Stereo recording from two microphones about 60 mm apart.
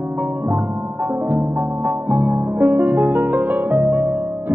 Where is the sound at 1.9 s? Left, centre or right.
Right.